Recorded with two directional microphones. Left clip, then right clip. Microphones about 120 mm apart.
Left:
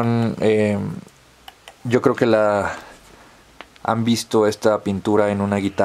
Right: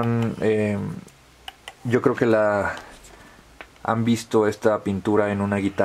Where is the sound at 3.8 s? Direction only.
30° left (ahead or behind).